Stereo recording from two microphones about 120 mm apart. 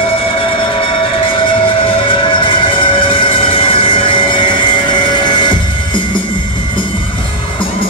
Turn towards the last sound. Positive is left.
turn(degrees=40)  # may be behind; listen again after turning